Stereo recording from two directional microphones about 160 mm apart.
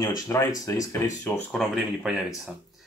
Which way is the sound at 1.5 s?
Centre (ahead or behind).